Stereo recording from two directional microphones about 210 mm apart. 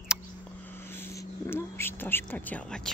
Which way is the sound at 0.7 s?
10° left (ahead or behind).